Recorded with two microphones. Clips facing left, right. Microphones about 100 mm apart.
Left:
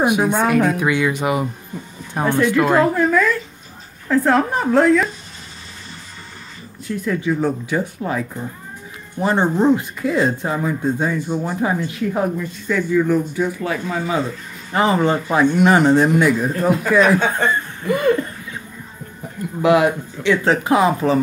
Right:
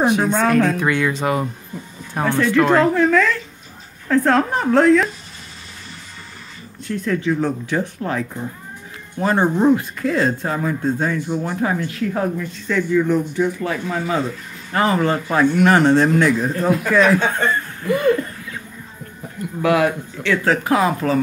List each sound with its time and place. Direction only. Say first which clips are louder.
0.0 s a woman's voice: even; 15° left (ahead or behind)
6.9 s speech: even; 10° left (ahead or behind)
9.2 s speech: even; 20° left (ahead or behind)
14.7 s speech: left 1 dB; 20° left (ahead or behind)
19.6 s speech: left 2 dB; 20° left (ahead or behind)